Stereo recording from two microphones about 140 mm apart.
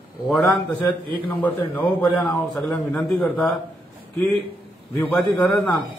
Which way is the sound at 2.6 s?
Centre (ahead or behind).